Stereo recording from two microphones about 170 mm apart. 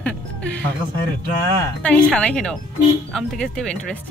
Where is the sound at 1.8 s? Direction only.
5° left (ahead or behind).